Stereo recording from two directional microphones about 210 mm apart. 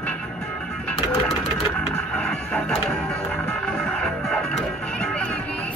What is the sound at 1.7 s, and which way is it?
Music, 5° left (ahead or behind).